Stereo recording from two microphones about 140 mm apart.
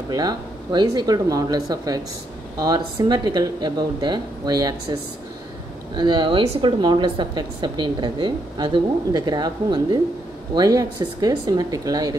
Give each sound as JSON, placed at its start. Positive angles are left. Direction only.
{"t": 0.1, "sound": "speech", "side_deg": -30}
{"t": 5.9, "sound": "a woman's voice", "side_deg": -30}